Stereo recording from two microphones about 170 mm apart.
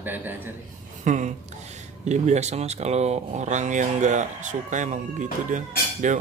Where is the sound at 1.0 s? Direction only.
45° right (ahead or behind).